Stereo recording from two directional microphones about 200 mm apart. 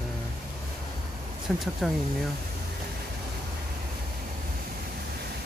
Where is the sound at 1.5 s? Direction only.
Centre (ahead or behind).